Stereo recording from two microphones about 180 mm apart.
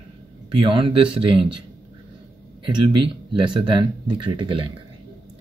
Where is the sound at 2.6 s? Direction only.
25° right (ahead or behind).